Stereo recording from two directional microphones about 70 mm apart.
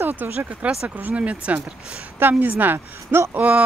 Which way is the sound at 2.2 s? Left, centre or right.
Right.